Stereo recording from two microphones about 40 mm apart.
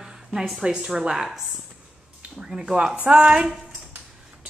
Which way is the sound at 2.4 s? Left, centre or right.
Centre.